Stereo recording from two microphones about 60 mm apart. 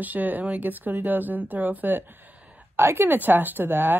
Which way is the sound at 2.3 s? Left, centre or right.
Right.